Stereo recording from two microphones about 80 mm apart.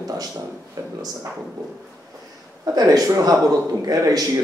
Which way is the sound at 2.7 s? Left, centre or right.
Right.